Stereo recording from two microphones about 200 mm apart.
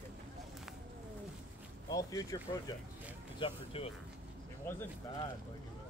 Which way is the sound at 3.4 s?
30° left (ahead or behind).